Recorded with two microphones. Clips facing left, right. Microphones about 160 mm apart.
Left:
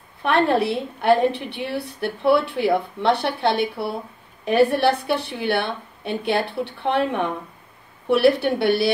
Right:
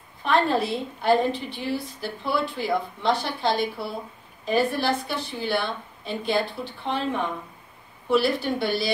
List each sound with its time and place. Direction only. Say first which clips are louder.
0.2 s a woman's voice: left 3 dB; 65° left (ahead or behind)